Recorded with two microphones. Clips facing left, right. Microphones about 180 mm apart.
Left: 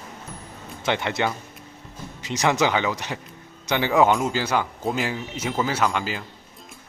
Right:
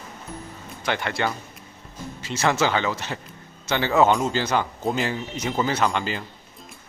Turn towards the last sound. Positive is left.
turn(degrees=5)  # may be behind; listen again after turning